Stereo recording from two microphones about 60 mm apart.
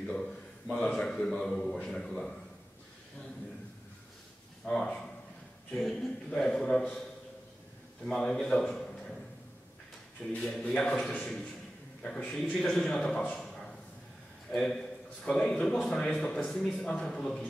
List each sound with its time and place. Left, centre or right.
0.7 s a man's voice: centre
4.6 s a man's voice: centre
8.0 s a man's voice: centre
10.2 s a man's voice: centre
12.3 s a man's voice: centre
14.5 s a man's voice: centre
16.7 s a man's voice: centre